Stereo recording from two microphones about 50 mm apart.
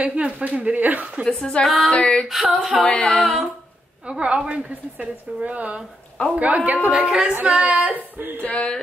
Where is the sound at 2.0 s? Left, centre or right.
Centre.